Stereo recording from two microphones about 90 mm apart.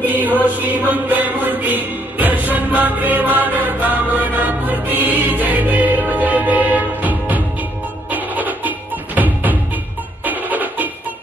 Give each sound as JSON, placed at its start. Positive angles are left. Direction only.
{"t": 0.1, "sound": "music", "side_deg": -20}